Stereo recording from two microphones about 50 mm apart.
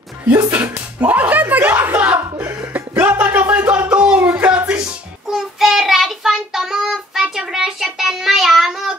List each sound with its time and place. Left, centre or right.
0.3 s speech: right
0.7 s slap: right
1.7 s a sound: right
2.7 s music: right
4.3 s a sound: right
5.3 s child singing: centre